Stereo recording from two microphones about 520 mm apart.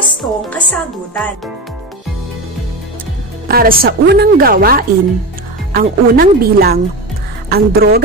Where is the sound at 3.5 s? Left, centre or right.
Centre.